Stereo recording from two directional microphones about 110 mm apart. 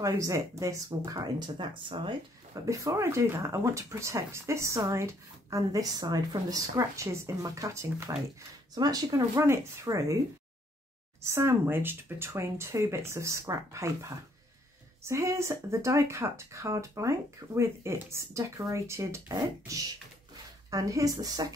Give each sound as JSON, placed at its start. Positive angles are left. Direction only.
{"t": 0.0, "sound": "speech", "side_deg": -30}
{"t": 2.6, "sound": "speech", "side_deg": -30}
{"t": 11.2, "sound": "speech", "side_deg": -25}